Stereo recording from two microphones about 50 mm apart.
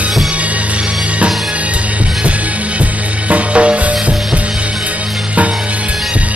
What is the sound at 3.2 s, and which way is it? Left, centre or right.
Music, right.